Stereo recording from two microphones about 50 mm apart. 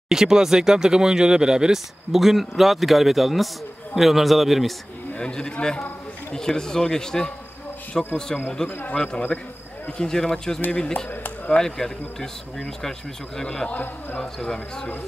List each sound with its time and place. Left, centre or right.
0.1 s a man's voice: centre
5.1 s speech: centre
8.6 s a man's voice: left
8.9 s speech: centre
13.7 s a man's voice: left
14.2 s speech: centre